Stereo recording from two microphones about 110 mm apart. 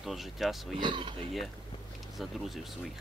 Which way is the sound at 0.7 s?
45° right (ahead or behind).